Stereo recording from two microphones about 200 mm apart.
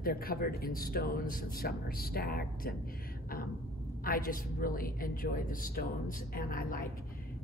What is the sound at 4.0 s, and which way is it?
Speech, 45° left (ahead or behind).